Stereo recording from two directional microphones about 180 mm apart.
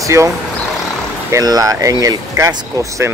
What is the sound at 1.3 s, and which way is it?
Speech, 20° right (ahead or behind).